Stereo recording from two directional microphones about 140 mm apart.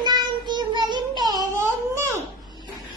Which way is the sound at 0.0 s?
30° right (ahead or behind).